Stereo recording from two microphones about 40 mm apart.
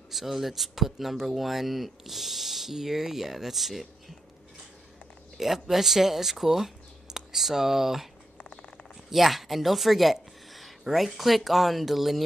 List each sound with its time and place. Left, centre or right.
0.1 s speech: centre
5.4 s speech: centre
9.1 s speech: centre